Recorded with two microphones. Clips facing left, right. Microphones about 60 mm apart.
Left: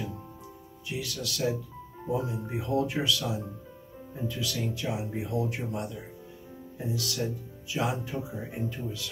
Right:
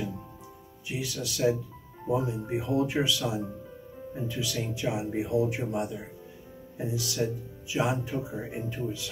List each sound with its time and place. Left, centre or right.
0.8 s speech: centre